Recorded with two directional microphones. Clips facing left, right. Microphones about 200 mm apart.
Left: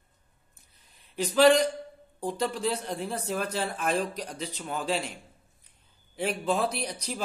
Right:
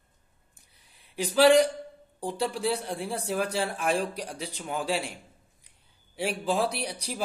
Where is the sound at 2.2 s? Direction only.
10° right (ahead or behind).